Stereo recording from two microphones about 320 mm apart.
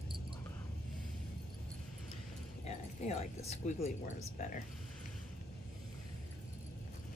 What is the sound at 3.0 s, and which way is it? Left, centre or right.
Speech, centre.